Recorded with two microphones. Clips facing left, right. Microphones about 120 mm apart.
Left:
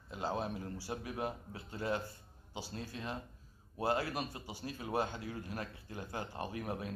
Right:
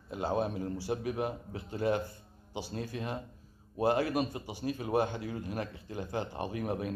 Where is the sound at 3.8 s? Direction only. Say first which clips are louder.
Right 6 dB; 20° right (ahead or behind).